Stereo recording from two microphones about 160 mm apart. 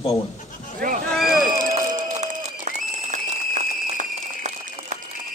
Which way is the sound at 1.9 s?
50° right (ahead or behind).